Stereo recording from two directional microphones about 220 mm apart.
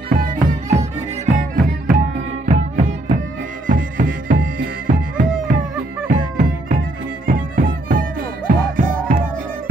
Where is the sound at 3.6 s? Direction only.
40° right (ahead or behind).